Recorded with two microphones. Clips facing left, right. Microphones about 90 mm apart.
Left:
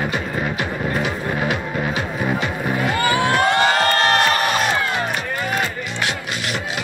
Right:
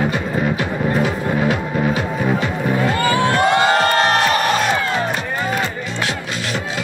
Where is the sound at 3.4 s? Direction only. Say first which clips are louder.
Right 3 dB; 20° right (ahead or behind).